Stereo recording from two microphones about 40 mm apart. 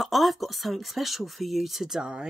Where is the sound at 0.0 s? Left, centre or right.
Centre.